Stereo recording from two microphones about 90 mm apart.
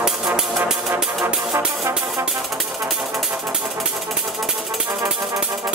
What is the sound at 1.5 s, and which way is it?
Brass instrument, 30° right (ahead or behind).